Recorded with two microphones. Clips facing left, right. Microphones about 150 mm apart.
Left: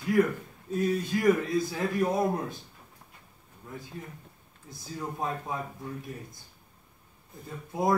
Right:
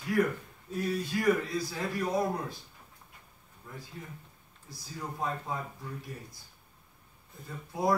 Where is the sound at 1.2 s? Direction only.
20° left (ahead or behind).